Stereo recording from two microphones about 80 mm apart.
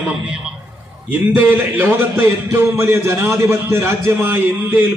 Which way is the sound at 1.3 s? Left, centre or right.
Right.